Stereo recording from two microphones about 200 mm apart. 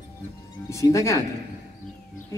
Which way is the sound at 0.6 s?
15° left (ahead or behind).